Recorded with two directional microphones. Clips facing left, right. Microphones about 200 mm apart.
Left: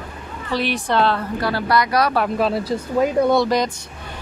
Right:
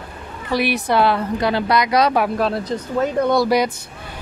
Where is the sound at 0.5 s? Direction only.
10° right (ahead or behind).